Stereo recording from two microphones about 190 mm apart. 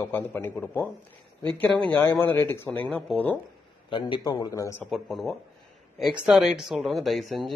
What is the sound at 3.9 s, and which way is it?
Speech, 25° left (ahead or behind).